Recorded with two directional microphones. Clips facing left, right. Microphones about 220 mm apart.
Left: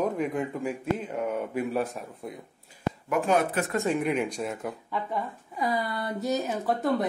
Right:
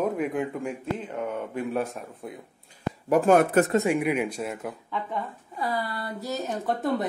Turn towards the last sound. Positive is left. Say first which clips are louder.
# even
turn(degrees=0)  # may be behind; listen again after turning